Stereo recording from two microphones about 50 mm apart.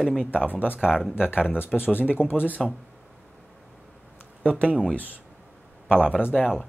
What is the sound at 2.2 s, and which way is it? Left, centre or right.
Speech, left.